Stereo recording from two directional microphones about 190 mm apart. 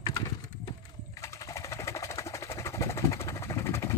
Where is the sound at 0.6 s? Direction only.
15° left (ahead or behind).